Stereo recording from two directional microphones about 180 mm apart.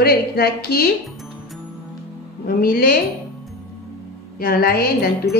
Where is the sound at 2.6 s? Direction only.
55° left (ahead or behind).